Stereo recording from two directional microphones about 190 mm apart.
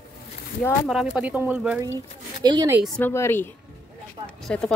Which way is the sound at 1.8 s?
20° right (ahead or behind).